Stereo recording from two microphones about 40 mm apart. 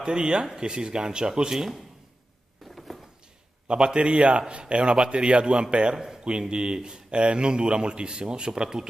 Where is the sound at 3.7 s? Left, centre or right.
Right.